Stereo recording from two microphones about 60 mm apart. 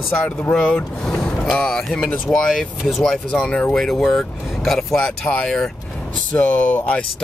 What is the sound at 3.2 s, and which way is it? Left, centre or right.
Speech, centre.